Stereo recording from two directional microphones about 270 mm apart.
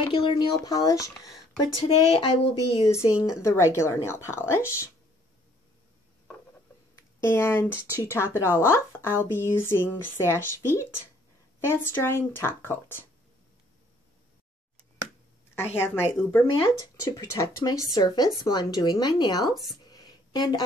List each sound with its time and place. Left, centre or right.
0.0 s speech: centre
7.0 s speech: centre
15.5 s speech: centre
19.9 s a sound: centre